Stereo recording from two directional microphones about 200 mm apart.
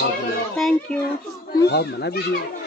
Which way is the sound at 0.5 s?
Centre (ahead or behind).